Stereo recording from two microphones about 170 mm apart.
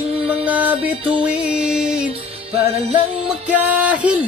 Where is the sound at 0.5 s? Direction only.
10° right (ahead or behind).